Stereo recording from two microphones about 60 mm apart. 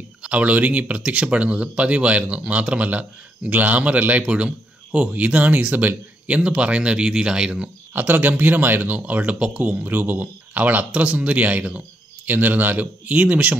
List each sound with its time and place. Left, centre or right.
0.2 s speech: right
7.9 s speech: right